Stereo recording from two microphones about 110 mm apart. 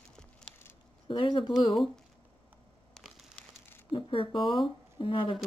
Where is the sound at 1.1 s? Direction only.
50° left (ahead or behind).